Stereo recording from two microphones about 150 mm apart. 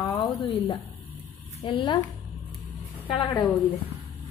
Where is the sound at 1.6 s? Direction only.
30° left (ahead or behind).